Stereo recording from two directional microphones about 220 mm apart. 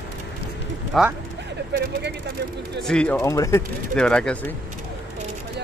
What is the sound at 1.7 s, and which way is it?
Speech, 50° right (ahead or behind).